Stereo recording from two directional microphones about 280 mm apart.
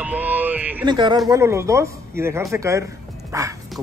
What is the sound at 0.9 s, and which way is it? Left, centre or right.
Speech, centre.